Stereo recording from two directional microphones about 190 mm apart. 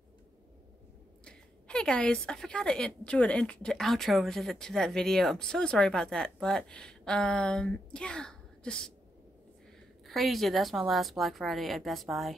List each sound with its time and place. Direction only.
1.2 s a woman's voice: 5° left (ahead or behind)
10.0 s a woman's voice: centre (ahead or behind)